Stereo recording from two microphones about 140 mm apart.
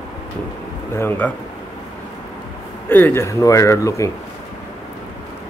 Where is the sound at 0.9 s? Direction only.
15° left (ahead or behind).